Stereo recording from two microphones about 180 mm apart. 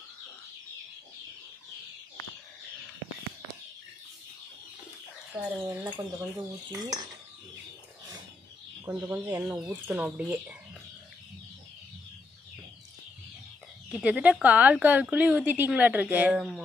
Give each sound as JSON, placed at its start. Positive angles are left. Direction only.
{"t": 5.3, "sound": "speech", "side_deg": -5}
{"t": 5.9, "sound": "cutlery", "side_deg": -15}
{"t": 8.8, "sound": "a woman's voice", "side_deg": -15}
{"t": 13.9, "sound": "a woman's voice", "side_deg": -5}